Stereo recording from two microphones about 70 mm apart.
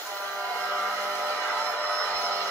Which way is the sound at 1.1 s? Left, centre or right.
Left.